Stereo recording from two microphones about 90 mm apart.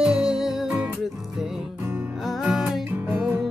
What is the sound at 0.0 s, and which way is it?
Music, 10° right (ahead or behind).